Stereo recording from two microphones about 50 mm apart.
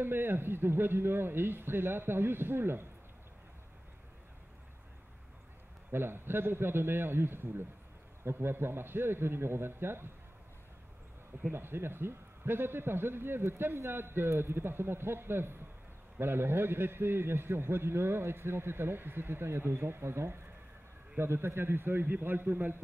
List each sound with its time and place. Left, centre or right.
0.0 s a man's voice: right
5.9 s a man's voice: right
11.5 s a man's voice: right